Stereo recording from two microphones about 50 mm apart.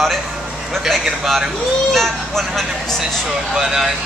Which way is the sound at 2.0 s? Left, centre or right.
Centre.